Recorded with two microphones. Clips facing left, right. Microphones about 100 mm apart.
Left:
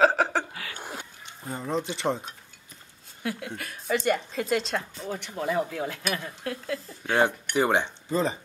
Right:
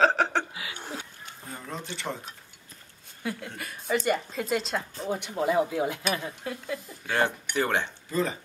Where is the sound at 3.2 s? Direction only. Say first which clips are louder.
Left 2 dB; centre (ahead or behind).